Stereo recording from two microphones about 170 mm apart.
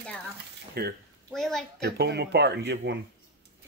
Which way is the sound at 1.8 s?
75° right (ahead or behind).